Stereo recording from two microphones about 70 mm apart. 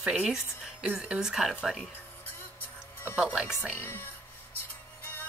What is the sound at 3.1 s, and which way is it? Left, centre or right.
Speech, centre.